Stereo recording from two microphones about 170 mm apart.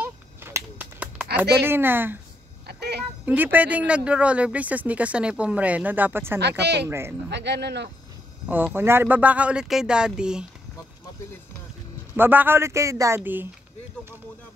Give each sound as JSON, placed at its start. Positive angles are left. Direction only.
{"t": 0.0, "sound": "a sound", "side_deg": -15}
{"t": 1.3, "sound": "speech", "side_deg": -15}
{"t": 2.6, "sound": "a sound", "side_deg": -75}
{"t": 3.3, "sound": "speech", "side_deg": -10}
{"t": 6.6, "sound": "speech", "side_deg": -85}
{"t": 6.9, "sound": "speech", "side_deg": -15}
{"t": 7.2, "sound": "speech", "side_deg": -90}
{"t": 8.7, "sound": "speech", "side_deg": -15}
{"t": 12.2, "sound": "speech", "side_deg": -10}